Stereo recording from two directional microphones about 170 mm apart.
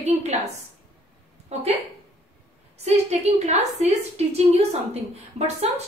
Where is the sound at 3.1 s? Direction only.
40° right (ahead or behind).